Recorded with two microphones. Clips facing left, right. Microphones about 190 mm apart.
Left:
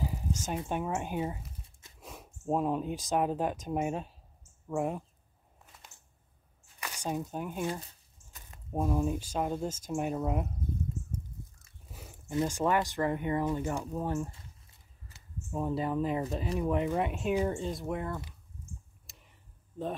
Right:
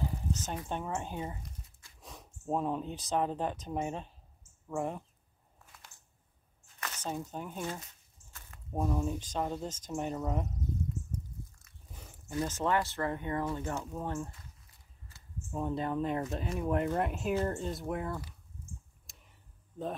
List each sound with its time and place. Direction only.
0.0 s a sound: 10° left (ahead or behind)
0.7 s speech: 10° left (ahead or behind)
6.8 s speech: 10° left (ahead or behind)
8.3 s squish: 20° left (ahead or behind)
9.0 s speech: 10° left (ahead or behind)
12.4 s speech: 10° left (ahead or behind)
15.5 s speech: 5° left (ahead or behind)
19.0 s a sound: centre (ahead or behind)